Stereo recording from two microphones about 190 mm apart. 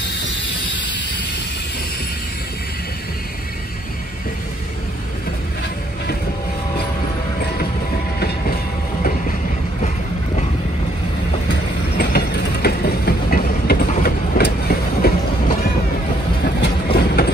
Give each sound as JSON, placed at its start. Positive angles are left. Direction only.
{"t": 12.0, "sound": "train", "side_deg": 55}